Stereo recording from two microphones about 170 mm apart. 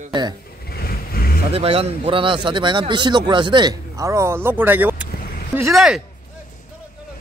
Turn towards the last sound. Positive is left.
turn(degrees=0)  # may be behind; listen again after turning